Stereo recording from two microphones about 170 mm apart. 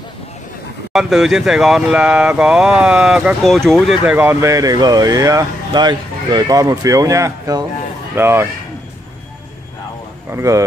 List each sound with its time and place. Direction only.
0.9 s speech: centre (ahead or behind)
4.0 s speech: 10° right (ahead or behind)
10.3 s speech: 15° right (ahead or behind)